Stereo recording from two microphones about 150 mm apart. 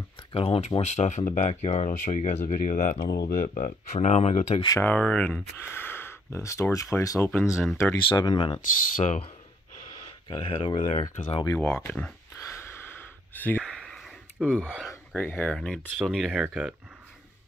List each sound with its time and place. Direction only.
0.3 s speech: 40° left (ahead or behind)
4.7 s speech: 10° left (ahead or behind)
7.4 s speech: 5° right (ahead or behind)
8.1 s speech: 30° left (ahead or behind)
8.5 s speech: 50° left (ahead or behind)
10.4 s speech: 40° left (ahead or behind)
11.6 s speech: 10° left (ahead or behind)
12.5 s a sound: 15° left (ahead or behind)
14.5 s speech: 10° left (ahead or behind)